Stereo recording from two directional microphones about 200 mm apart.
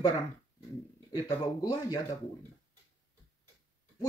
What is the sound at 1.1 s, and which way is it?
Speech, 20° left (ahead or behind).